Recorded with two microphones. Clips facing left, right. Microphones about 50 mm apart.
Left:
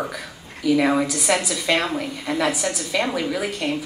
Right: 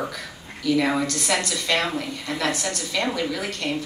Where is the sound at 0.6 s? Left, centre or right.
Centre.